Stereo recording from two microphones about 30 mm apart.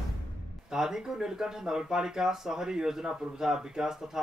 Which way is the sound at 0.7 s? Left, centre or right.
Centre.